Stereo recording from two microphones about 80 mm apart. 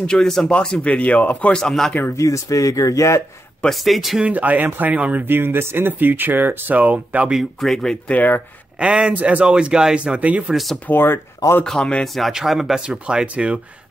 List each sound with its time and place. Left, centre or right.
0.0 s speech: centre
1.6 s speech: centre
2.1 s speech: left
3.6 s speech: centre
4.2 s speech: centre
7.2 s speech: centre
8.7 s speech: centre
10.5 s speech: centre
10.9 s speech: left
11.6 s speech: centre
12.2 s speech: centre